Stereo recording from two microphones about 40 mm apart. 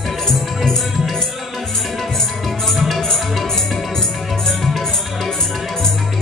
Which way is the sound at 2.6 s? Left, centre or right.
Centre.